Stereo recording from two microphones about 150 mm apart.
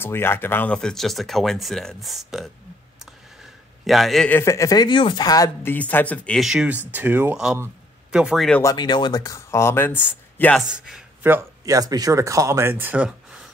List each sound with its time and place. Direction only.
0.0 s speech: 15° left (ahead or behind); by 2.5 s centre (ahead or behind)
3.8 s speech: centre (ahead or behind)
4.3 s speech: 15° left (ahead or behind)
6.4 s speech: 5° right (ahead or behind)
8.6 s speech: 30° left (ahead or behind); by 10.6 s 10° left (ahead or behind)
11.2 s speech: 20° right (ahead or behind)